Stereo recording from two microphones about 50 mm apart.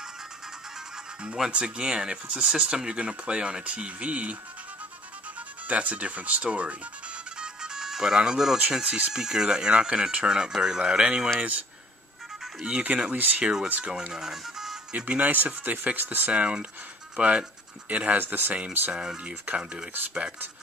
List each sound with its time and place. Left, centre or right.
1.2 s speech: centre
5.7 s speech: right
7.3 s music: centre
8.5 s speech: centre
11.3 s speech: right
12.6 s speech: right
13.4 s speech: centre
13.7 s speech: right
14.1 s speech: centre
14.9 s speech: right
15.3 s speech: right
16.3 s speech: right
18.5 s speech: right